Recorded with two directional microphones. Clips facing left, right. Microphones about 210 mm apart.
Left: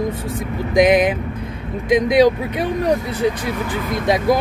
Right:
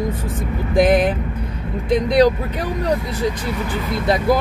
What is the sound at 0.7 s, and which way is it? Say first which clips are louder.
Speech: left 1 dB; 15° left (ahead or behind).